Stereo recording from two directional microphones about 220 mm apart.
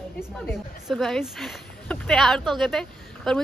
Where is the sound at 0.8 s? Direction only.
Centre (ahead or behind).